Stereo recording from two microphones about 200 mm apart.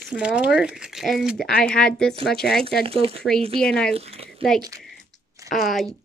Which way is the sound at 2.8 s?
30° right (ahead or behind).